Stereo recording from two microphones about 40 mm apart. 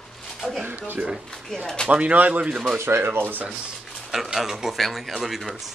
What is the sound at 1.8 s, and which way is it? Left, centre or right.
Speech, right.